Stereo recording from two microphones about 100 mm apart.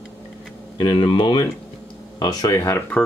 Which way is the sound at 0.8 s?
55° left (ahead or behind).